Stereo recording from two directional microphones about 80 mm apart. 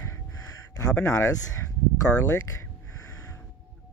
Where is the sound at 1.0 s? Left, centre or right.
Left.